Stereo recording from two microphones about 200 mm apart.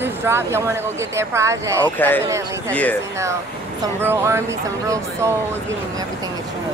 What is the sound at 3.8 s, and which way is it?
Speech, 10° right (ahead or behind).